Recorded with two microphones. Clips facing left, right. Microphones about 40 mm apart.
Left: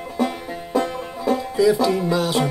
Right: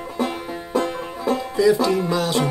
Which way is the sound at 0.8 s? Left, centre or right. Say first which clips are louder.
Even; centre.